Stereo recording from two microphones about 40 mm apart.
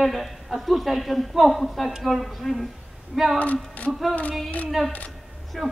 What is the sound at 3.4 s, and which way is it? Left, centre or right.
Speech, left.